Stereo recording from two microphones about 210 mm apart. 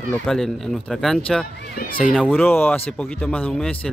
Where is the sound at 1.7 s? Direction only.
45° left (ahead or behind).